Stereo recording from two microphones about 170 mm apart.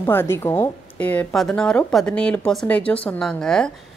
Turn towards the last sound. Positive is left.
turn(degrees=5)  # may be behind; listen again after turning